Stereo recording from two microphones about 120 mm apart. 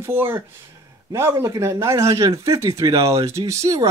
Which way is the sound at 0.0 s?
20° right (ahead or behind).